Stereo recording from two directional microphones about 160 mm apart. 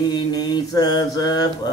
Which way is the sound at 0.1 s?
25° left (ahead or behind).